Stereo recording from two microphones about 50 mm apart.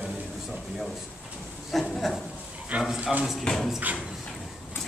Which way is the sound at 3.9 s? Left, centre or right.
Right.